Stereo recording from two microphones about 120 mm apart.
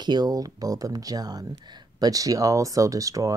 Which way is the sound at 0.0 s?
35° right (ahead or behind).